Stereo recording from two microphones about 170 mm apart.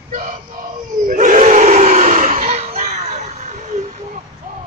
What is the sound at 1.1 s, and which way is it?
Battle cry, 50° right (ahead or behind).